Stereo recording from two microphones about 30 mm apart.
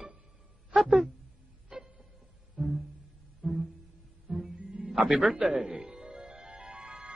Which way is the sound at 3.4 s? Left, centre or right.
Centre.